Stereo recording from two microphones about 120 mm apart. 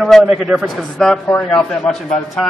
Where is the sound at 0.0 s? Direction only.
Centre (ahead or behind).